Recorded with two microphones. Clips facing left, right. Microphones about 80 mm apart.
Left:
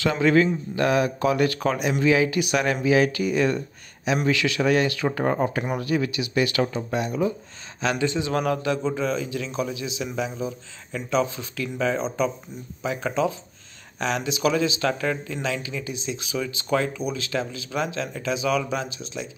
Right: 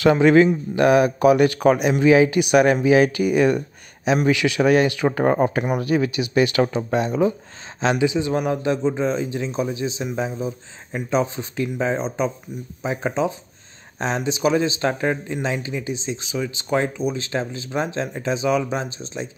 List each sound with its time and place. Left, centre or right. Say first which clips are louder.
0.0 s speech: right 6 dB; right
6.6 s speech: right 5 dB; right
7.8 s speech: right 4 dB; right
11.1 s speech: right 2 dB; right